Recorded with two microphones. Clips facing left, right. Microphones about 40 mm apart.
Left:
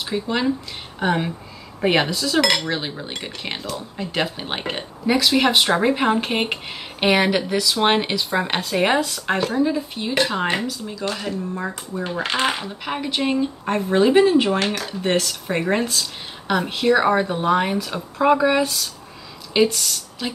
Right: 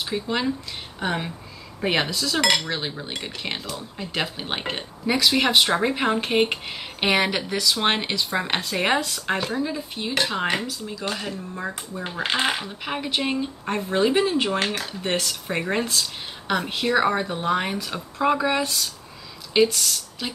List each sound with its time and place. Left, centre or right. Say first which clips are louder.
0.0 s speech: left 3 dB; centre
0.9 s cutlery: left 6 dB; centre
14.6 s speech: left 2 dB; centre
14.9 s cutlery: left 5 dB; centre
19.5 s speech: left 1 dB; centre